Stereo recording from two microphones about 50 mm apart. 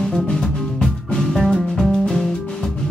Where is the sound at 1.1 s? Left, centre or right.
Centre.